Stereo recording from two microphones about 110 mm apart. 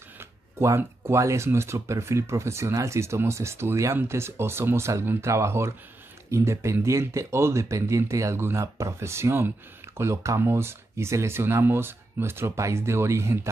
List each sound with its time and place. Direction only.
0.6 s speech: 25° right (ahead or behind)